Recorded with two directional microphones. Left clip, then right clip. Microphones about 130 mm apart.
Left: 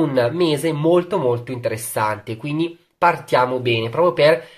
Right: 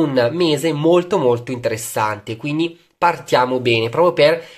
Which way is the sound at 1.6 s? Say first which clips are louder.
Right 1 dB; 25° right (ahead or behind).